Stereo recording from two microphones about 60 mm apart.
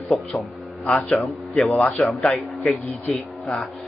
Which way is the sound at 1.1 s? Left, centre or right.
Centre.